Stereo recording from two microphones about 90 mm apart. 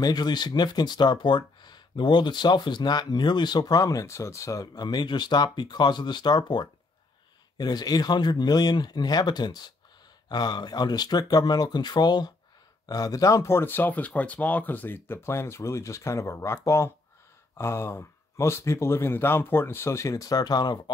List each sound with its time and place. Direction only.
0.0 s speech: 50° left (ahead or behind)